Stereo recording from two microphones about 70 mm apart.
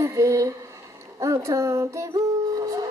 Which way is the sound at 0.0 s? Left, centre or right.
Right.